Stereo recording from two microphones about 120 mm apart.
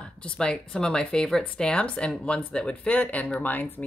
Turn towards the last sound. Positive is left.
turn(degrees=15)  # may be behind; listen again after turning